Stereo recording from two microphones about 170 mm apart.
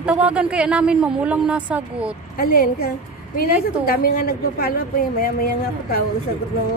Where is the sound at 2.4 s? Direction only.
60° left (ahead or behind).